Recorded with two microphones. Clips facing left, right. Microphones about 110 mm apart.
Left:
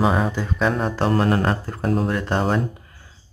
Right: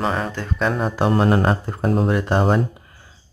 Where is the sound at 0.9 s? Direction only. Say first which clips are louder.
Right 2 dB; 15° right (ahead or behind).